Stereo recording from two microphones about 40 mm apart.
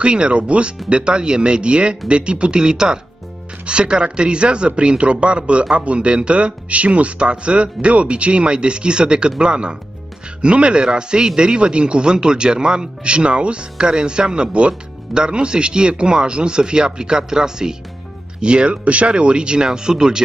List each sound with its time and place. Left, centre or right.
0.0 s speech: right